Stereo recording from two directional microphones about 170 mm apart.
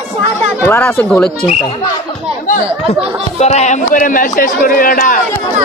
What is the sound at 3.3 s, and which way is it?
A man's voice, 40° left (ahead or behind).